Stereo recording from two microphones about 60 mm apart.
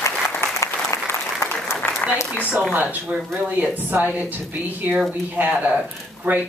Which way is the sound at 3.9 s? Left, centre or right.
Right.